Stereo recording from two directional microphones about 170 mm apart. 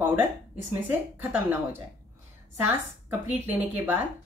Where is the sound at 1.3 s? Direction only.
15° right (ahead or behind).